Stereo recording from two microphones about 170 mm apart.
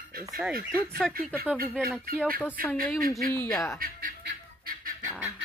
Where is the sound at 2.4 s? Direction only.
10° left (ahead or behind).